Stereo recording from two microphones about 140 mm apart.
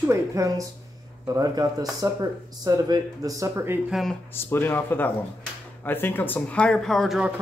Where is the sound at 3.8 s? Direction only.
Centre (ahead or behind).